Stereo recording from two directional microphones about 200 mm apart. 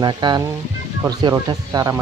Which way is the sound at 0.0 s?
20° right (ahead or behind).